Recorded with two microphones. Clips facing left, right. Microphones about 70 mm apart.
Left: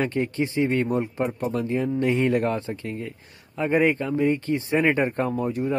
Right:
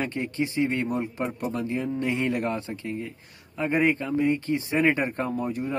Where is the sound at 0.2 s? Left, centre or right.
Left.